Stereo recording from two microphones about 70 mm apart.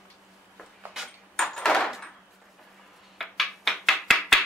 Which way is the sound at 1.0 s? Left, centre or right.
Centre.